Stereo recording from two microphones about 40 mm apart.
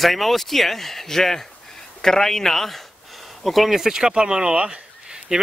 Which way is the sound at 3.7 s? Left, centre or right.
Centre.